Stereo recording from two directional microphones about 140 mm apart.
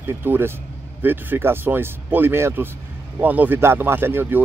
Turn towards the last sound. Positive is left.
turn(degrees=-15)  # may be behind; listen again after turning